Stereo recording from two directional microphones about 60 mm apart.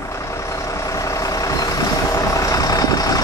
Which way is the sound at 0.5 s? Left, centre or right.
Left.